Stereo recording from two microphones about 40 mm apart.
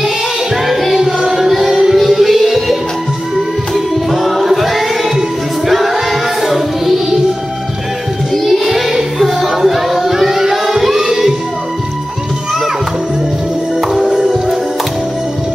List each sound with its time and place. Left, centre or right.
0.7 s music: centre
8.3 s child singing: centre
13.7 s music: centre
14.2 s music: centre